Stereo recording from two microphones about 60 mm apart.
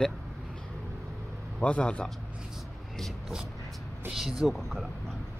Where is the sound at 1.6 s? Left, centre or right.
Left.